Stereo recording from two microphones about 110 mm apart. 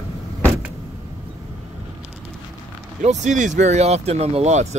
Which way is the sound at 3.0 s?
90° right.